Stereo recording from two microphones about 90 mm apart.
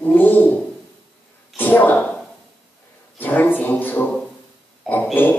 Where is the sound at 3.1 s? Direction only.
20° left (ahead or behind).